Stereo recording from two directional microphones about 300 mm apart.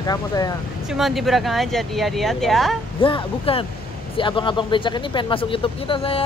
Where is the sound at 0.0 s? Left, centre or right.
Centre.